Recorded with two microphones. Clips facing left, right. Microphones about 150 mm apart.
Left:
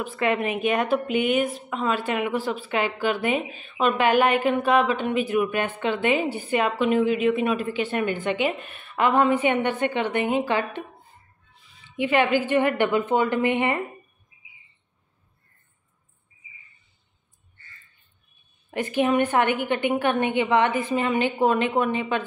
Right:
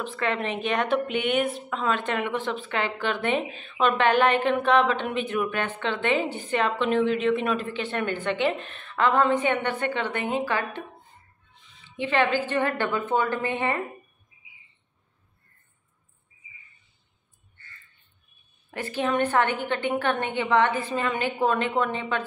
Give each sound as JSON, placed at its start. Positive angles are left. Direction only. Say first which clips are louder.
{"t": 0.0, "sound": "a woman's voice", "louder": "left 4 dB", "side_deg": 10}
{"t": 18.7, "sound": "a woman's voice", "louder": "left 5 dB", "side_deg": 15}